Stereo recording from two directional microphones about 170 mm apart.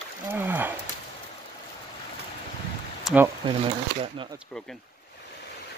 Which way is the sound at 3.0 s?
10° right (ahead or behind).